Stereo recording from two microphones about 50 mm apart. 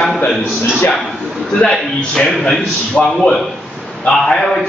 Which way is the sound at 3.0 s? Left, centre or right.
Centre.